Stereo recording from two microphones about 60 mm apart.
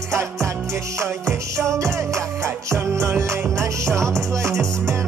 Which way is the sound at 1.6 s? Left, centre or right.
Right.